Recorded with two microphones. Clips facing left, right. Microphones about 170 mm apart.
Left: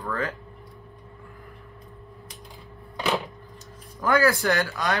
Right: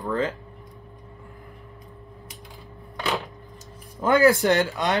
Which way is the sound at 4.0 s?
20° right (ahead or behind).